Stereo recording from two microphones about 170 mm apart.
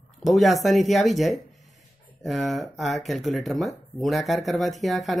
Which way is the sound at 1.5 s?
45° left (ahead or behind).